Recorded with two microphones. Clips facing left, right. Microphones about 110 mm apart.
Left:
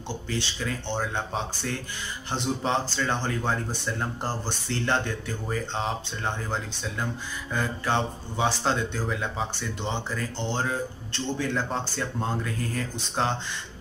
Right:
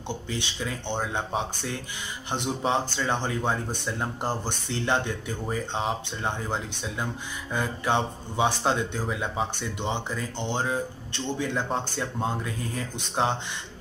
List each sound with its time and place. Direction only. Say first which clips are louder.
0.4 s a man's voice: left 1 dB; 15° right (ahead or behind)